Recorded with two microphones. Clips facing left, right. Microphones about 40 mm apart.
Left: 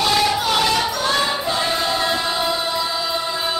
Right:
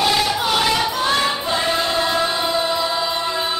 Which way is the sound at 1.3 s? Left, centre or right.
Centre.